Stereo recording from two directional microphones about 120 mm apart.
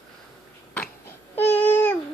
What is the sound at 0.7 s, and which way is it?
Babbling, 15° left (ahead or behind).